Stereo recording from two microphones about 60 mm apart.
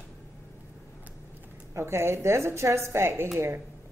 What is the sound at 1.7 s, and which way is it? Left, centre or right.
A woman's voice, right.